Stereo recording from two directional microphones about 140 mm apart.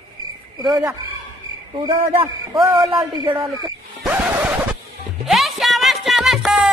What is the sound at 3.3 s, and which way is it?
Speech, 40° right (ahead or behind).